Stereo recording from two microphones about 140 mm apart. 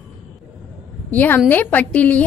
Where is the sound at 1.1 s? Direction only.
15° left (ahead or behind).